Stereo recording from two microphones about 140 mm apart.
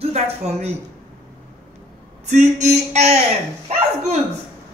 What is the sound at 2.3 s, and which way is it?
Speech, 60° right (ahead or behind).